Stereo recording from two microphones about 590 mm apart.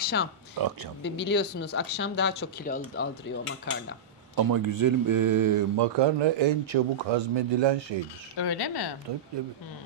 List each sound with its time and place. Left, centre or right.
0.0 s speech: centre
4.4 s speech: right
8.4 s a woman's voice: left